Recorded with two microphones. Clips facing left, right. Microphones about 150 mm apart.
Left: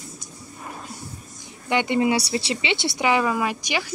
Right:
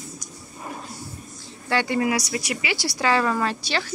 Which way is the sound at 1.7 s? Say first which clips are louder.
Left 2 dB; 20° left (ahead or behind).